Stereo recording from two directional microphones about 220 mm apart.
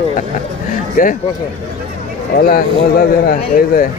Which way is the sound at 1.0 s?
40° left (ahead or behind).